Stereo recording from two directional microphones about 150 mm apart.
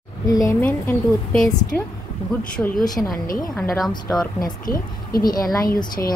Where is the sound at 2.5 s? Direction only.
5° left (ahead or behind).